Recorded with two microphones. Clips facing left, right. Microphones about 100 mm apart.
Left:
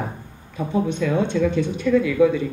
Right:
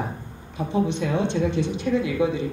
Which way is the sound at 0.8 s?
45° left (ahead or behind).